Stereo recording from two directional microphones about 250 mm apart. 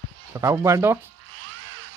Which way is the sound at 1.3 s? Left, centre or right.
Right.